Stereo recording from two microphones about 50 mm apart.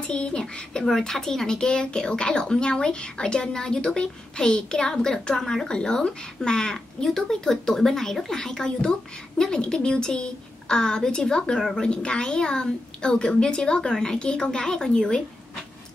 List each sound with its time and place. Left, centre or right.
0.0 s a woman's voice: left